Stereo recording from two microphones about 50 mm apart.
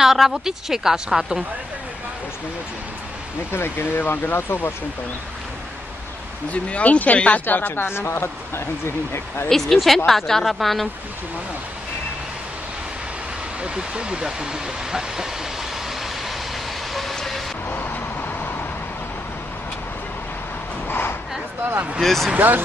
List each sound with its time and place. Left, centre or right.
0.0 s speech: centre
3.5 s speech: left
6.5 s speech: left
7.4 s speech: left
9.5 s speech: centre
13.6 s speech: centre
16.9 s vehicle: centre
17.6 s vehicle: left
22.0 s speech: centre
22.3 s speech: right